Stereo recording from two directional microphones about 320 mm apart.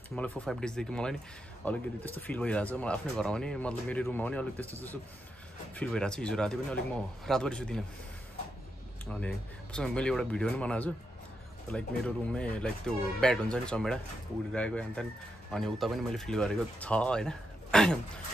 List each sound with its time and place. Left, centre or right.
0.3 s speech: centre
5.8 s speech: centre
9.1 s speech: centre